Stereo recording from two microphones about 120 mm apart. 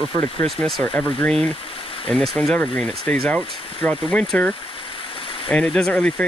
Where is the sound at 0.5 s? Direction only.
Centre (ahead or behind).